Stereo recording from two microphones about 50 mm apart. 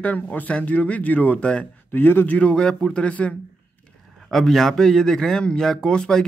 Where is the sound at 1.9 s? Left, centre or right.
Left.